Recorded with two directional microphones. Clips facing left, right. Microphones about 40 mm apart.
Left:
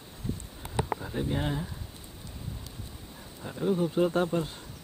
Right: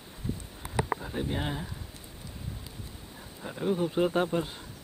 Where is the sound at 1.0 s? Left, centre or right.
Centre.